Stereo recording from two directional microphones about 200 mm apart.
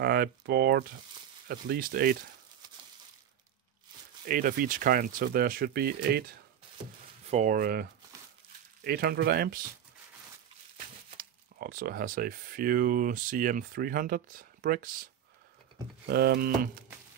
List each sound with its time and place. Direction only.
0.0 s speech: 50° right (ahead or behind)
4.3 s speech: 45° right (ahead or behind)
7.2 s speech: 40° right (ahead or behind)
11.1 s speech: 50° right (ahead or behind)
16.1 s speech: 50° right (ahead or behind)